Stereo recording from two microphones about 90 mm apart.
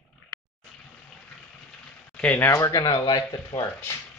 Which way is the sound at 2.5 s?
40° left (ahead or behind).